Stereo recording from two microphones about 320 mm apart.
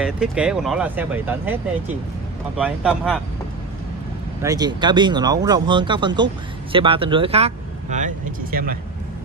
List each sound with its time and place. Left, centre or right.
0.0 s speech: centre
4.4 s speech: centre; by 8.7 s right